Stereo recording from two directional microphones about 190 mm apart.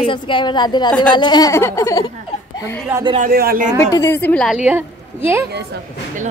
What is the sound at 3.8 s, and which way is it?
Speech, 15° left (ahead or behind).